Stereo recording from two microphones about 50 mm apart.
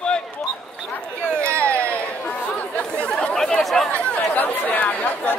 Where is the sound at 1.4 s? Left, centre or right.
Right.